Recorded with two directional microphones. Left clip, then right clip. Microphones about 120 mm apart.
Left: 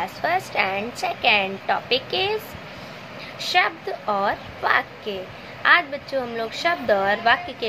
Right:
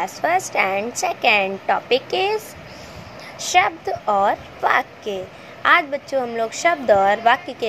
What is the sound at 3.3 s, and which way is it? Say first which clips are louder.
A woman's voice: right 3 dB; 50° right (ahead or behind).